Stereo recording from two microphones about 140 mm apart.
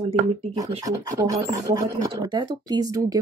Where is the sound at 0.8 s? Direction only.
25° right (ahead or behind).